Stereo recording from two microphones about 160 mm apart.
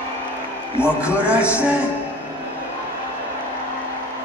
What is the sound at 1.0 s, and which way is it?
Speech, 10° right (ahead or behind).